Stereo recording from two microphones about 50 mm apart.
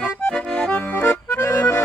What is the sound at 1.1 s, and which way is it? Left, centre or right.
Accordion, left.